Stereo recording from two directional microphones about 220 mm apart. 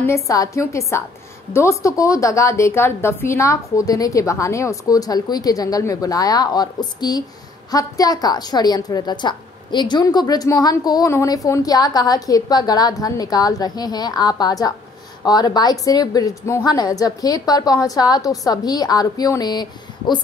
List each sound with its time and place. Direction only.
0.0 s a woman's voice: 15° left (ahead or behind)